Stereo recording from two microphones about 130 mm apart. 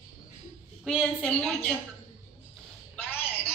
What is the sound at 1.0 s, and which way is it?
Speech, 5° left (ahead or behind).